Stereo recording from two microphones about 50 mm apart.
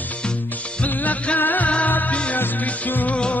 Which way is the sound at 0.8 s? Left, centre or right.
Left.